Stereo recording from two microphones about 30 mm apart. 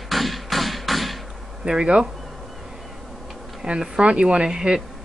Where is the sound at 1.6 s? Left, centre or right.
Right.